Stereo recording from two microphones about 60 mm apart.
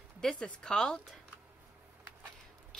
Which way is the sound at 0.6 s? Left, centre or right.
Centre.